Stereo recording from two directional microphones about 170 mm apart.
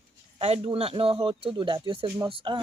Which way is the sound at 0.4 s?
35° right (ahead or behind).